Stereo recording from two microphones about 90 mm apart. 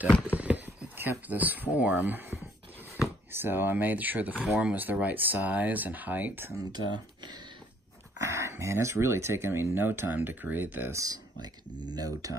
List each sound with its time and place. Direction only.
0.3 s speech: 15° right (ahead or behind)
8.2 s speech: 30° right (ahead or behind)
11.0 s speech: 45° right (ahead or behind)